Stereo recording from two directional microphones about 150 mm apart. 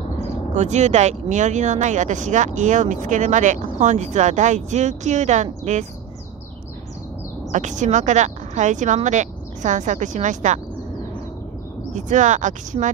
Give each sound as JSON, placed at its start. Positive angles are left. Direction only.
{"t": 0.2, "sound": "speech", "side_deg": -50}
{"t": 7.5, "sound": "speech", "side_deg": -55}
{"t": 11.9, "sound": "speech", "side_deg": -55}